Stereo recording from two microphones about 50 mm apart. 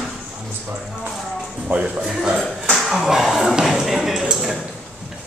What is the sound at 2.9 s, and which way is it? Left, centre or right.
Speech, centre.